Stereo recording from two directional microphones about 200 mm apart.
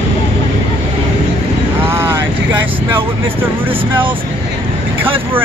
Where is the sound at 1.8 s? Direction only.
10° right (ahead or behind).